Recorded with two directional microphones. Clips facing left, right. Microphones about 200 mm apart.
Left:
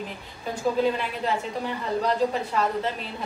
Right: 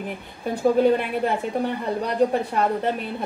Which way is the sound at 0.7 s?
55° right (ahead or behind).